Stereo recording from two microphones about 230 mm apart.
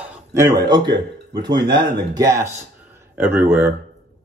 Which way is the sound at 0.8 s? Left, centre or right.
Right.